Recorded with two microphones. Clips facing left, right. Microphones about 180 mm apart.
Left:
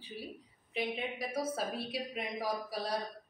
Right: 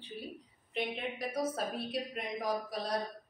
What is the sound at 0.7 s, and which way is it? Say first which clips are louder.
A woman's voice: even; centre (ahead or behind).